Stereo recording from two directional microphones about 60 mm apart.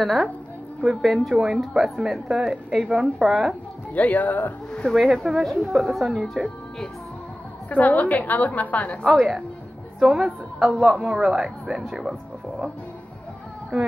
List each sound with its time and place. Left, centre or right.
0.0 s a woman's voice: centre
3.9 s a woman's voice: left
4.8 s speech: centre
7.7 s a woman's voice: left
9.0 s a woman's voice: centre
9.9 s a woman's voice: centre